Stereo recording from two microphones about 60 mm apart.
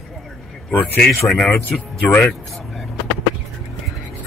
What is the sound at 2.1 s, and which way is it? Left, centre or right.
Speech, left.